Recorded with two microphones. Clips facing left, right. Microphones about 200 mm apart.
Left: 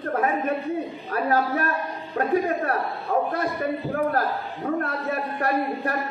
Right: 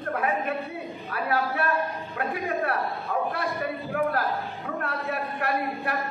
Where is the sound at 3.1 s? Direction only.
45° left (ahead or behind).